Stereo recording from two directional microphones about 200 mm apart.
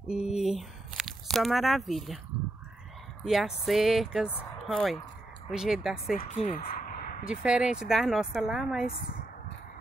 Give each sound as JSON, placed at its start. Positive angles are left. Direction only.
{"t": 0.4, "sound": "speech", "side_deg": 0}
{"t": 3.3, "sound": "speech", "side_deg": 0}
{"t": 6.1, "sound": "speech", "side_deg": 40}
{"t": 6.6, "sound": "a sound", "side_deg": 45}
{"t": 7.2, "sound": "speech", "side_deg": -5}
{"t": 8.8, "sound": "speech", "side_deg": 45}